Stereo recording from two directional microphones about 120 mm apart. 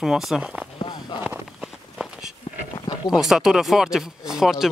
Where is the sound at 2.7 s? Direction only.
35° left (ahead or behind).